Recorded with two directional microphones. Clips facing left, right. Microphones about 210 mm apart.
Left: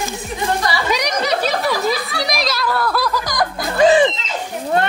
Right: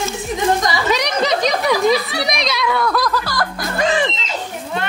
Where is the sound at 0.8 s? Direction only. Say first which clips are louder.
Right 2 dB; 10° left (ahead or behind).